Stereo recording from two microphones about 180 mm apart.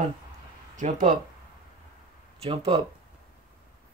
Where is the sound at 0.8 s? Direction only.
40° right (ahead or behind).